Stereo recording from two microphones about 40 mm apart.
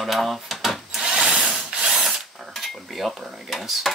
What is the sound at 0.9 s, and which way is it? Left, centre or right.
Wood, centre.